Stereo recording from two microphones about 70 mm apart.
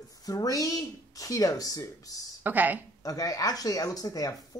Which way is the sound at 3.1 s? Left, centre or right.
Left.